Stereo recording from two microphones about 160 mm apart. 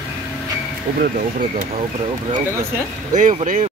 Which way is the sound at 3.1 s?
50° right (ahead or behind).